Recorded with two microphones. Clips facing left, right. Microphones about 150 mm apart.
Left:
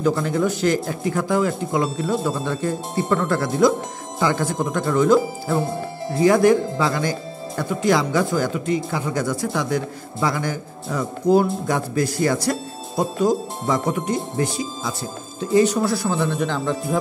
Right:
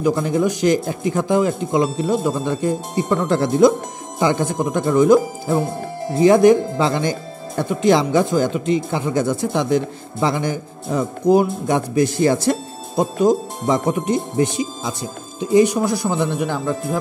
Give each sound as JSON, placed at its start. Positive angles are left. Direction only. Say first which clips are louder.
{"t": 0.0, "sound": "speech", "louder": "right 2 dB", "side_deg": -15}